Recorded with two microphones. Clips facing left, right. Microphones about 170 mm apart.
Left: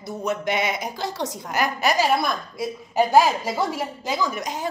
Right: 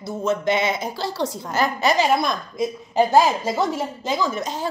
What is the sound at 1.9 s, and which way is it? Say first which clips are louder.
Speech: right 1 dB; 20° right (ahead or behind).